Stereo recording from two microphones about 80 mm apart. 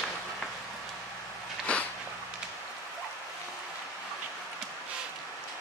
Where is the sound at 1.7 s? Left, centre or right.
Centre.